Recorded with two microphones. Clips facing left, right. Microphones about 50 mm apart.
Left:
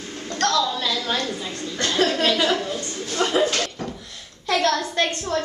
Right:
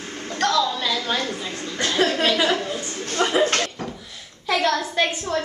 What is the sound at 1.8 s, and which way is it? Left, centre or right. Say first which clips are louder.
Speech: even; centre.